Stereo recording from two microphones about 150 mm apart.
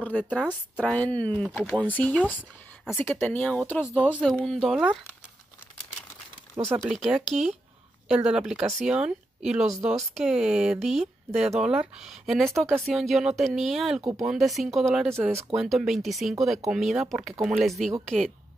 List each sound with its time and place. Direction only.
0.1 s speech: 10° left (ahead or behind)
6.8 s speech: 5° right (ahead or behind)
15.1 s speech: 15° right (ahead or behind)
15.5 s speech: 5° right (ahead or behind)